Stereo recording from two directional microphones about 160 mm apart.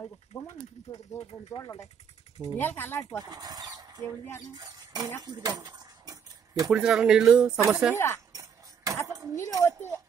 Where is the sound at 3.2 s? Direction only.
25° right (ahead or behind).